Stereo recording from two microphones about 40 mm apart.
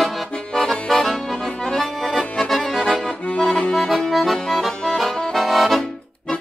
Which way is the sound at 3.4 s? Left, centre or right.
Centre.